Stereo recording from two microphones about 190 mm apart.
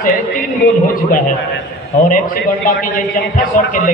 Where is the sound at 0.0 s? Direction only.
45° left (ahead or behind).